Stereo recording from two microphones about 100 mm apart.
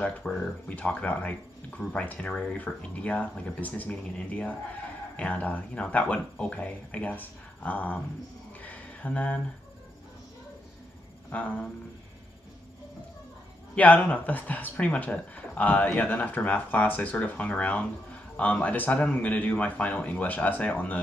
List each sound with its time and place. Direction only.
0.0 s speech: 10° left (ahead or behind)
8.6 s a sound: 15° left (ahead or behind)
11.3 s speech: 15° left (ahead or behind)
13.7 s speech: 15° left (ahead or behind)